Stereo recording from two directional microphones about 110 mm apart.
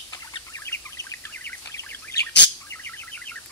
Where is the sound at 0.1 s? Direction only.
30° left (ahead or behind).